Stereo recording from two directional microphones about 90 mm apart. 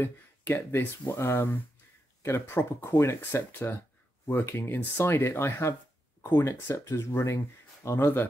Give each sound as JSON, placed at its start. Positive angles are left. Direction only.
{"t": 0.6, "sound": "speech", "side_deg": 30}